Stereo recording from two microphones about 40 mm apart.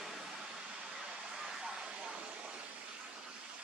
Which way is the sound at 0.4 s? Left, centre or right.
Right.